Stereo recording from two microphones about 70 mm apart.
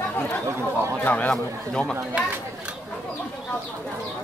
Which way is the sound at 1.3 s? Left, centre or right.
Centre.